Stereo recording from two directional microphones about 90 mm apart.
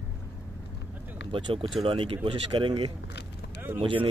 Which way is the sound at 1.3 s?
70° right (ahead or behind).